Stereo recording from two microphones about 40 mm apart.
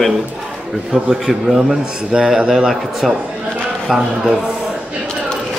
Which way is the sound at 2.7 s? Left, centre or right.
Centre.